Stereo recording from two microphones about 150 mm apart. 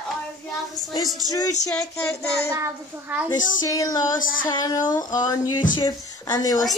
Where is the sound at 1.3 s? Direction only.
25° left (ahead or behind).